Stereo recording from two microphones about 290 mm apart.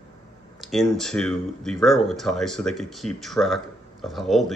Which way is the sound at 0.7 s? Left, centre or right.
Centre.